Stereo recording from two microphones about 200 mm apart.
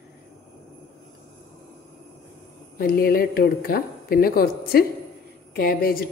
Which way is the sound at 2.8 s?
50° left (ahead or behind).